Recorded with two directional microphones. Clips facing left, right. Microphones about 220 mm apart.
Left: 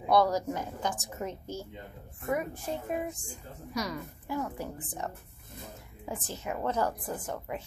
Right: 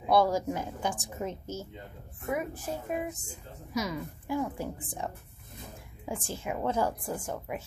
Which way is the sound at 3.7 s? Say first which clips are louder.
Right 2 dB; 10° right (ahead or behind).